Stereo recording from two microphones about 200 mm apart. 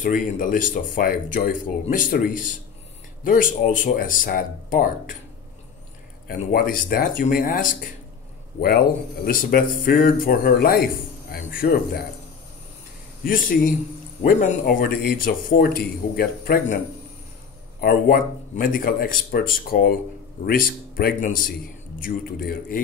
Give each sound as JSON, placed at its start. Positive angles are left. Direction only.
{"t": 0.0, "sound": "speech", "side_deg": 40}
{"t": 6.2, "sound": "speech", "side_deg": 45}
{"t": 14.2, "sound": "speech", "side_deg": 45}
{"t": 17.7, "sound": "speech", "side_deg": 45}